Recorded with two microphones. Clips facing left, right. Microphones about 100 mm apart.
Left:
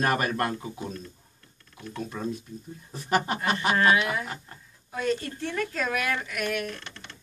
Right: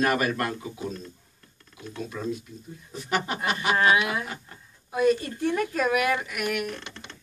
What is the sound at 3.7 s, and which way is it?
Speech, 10° right (ahead or behind).